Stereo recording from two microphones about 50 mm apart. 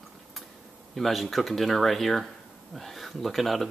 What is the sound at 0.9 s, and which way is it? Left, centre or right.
Speech, centre.